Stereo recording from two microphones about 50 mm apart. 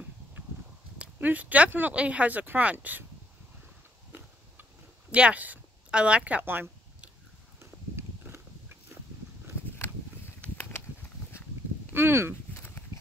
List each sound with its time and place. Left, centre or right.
1.2 s speech: right
5.1 s speech: right
6.4 s speech: right
7.5 s horse: right
11.9 s a sound: right
12.5 s a sound: left